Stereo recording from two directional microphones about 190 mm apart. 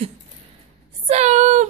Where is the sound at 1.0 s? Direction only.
35° right (ahead or behind).